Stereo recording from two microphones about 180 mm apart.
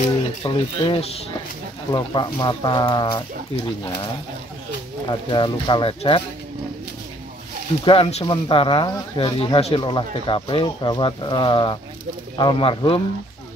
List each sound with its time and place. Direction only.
0.4 s speech: 25° left (ahead or behind)
7.8 s speech: 30° left (ahead or behind)